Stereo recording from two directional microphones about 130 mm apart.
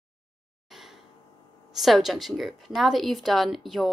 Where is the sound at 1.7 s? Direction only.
Centre (ahead or behind).